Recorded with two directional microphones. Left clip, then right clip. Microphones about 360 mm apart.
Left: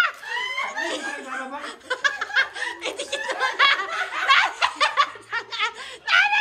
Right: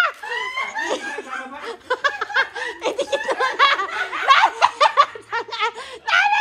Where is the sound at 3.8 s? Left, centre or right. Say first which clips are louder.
Right 2 dB; centre.